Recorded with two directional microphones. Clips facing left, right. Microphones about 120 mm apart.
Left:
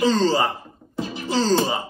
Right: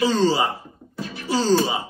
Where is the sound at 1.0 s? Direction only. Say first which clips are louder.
Left 2 dB; 25° left (ahead or behind).